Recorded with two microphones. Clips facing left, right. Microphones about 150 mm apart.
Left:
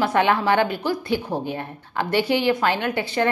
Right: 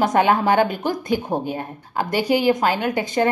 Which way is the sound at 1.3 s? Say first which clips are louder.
Right 2 dB; 15° right (ahead or behind).